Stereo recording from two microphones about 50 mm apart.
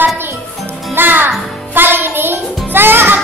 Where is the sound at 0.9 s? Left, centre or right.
Right.